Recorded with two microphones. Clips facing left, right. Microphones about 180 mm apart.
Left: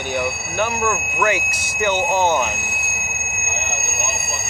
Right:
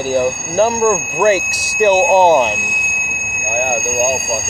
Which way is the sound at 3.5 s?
55° right (ahead or behind).